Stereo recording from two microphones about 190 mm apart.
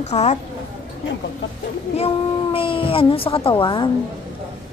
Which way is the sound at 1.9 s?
30° left (ahead or behind).